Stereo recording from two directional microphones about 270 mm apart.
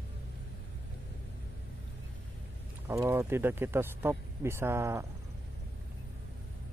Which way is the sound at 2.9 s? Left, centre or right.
Centre.